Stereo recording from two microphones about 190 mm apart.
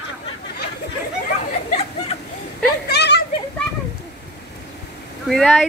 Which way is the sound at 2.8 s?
60° left (ahead or behind).